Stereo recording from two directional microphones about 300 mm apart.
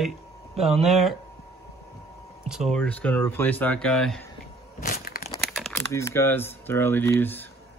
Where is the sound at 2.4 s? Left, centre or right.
Centre.